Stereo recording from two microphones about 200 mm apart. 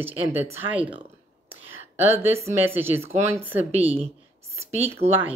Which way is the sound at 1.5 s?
10° right (ahead or behind).